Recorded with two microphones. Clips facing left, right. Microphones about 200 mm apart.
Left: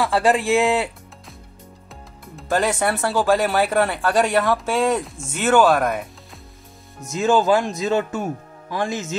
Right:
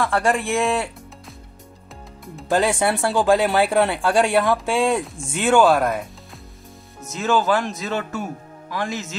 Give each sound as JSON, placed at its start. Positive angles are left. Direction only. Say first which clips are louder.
{"t": 0.0, "sound": "speech", "louder": "left 2 dB", "side_deg": 5}
{"t": 2.5, "sound": "speech", "louder": "right 1 dB", "side_deg": -10}
{"t": 5.0, "sound": "speech", "louder": "even", "side_deg": 5}
{"t": 7.2, "sound": "speech", "louder": "left 3 dB", "side_deg": 15}